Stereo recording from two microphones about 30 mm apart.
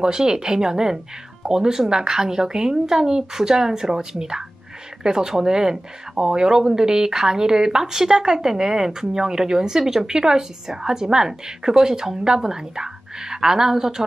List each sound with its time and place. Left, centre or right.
0.0 s speech: right